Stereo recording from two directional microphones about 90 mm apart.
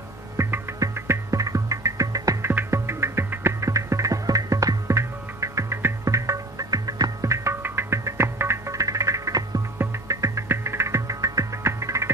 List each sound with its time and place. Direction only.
0.4 s music: 30° right (ahead or behind)
2.5 s music: 30° right (ahead or behind)